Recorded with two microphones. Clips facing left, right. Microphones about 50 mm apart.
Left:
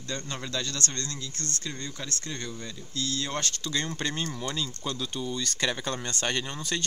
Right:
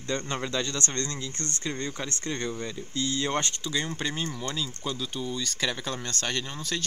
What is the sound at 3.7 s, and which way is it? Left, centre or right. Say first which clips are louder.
Speech: right 1 dB; centre.